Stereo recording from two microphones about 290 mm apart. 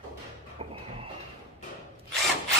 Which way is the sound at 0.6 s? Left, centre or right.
Centre.